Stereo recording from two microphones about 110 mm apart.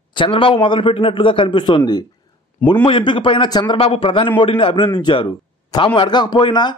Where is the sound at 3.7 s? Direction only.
55° left (ahead or behind).